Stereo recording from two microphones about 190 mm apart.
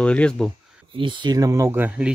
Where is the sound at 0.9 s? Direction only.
25° right (ahead or behind); by 2.2 s 5° right (ahead or behind).